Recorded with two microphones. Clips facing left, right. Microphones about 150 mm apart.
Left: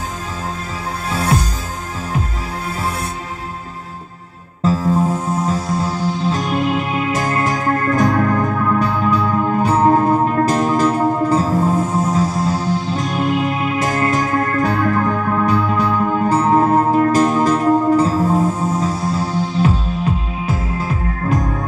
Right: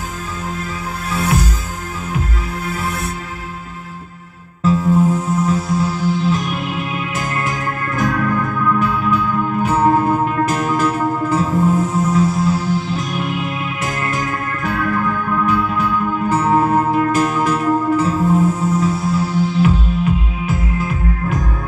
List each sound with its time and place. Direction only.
4.6 s music: 30° left (ahead or behind)
14.3 s music: 30° left (ahead or behind)